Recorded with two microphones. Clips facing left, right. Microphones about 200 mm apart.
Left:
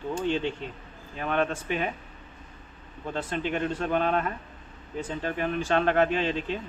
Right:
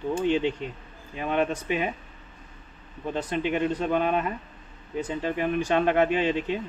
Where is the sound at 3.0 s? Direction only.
15° right (ahead or behind).